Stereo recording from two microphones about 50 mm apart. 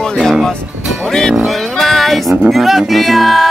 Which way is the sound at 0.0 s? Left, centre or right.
Centre.